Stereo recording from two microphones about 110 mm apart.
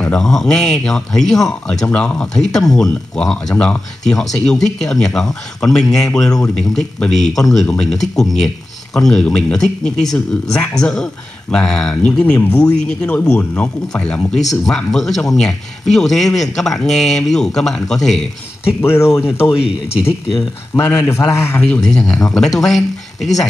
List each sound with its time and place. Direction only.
0.0 s speech: 10° left (ahead or behind)
18.8 s a man's voice: 25° left (ahead or behind)
19.6 s speech: 65° left (ahead or behind)
20.7 s a man's voice: 30° left (ahead or behind)
21.6 s speech: 5° left (ahead or behind)